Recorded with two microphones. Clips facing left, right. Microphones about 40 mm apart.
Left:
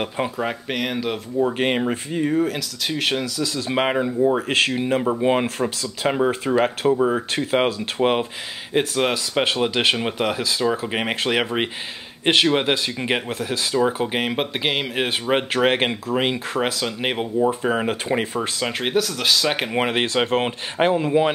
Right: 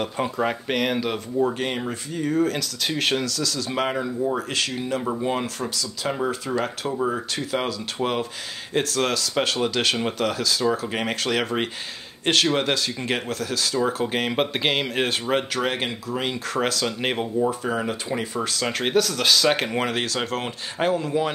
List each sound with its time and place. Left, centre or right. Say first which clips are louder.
0.4 s speech: right 1 dB; centre
1.5 s speech: left 6 dB; left
2.3 s speech: left 1 dB; centre
3.5 s speech: left 6 dB; left
6.9 s speech: left 5 dB; centre
7.3 s speech: left 6 dB; left
8.7 s speech: left 3 dB; centre
14.3 s speech: even; centre
15.5 s speech: left 6 dB; left
16.5 s speech: left 1 dB; centre
17.5 s speech: left 4 dB; left
18.6 s speech: right 1 dB; centre